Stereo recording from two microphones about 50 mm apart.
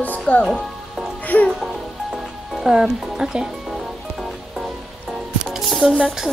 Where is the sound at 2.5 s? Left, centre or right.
Centre.